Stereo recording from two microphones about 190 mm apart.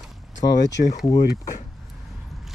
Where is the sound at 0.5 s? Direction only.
65° left (ahead or behind).